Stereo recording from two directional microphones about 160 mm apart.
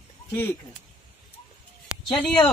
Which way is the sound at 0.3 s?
15° left (ahead or behind).